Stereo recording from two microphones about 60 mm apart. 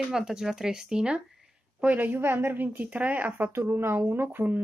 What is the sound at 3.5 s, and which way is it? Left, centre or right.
Speech, right.